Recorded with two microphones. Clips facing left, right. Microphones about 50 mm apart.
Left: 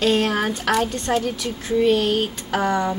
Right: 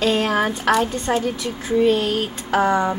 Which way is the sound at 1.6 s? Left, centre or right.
Centre.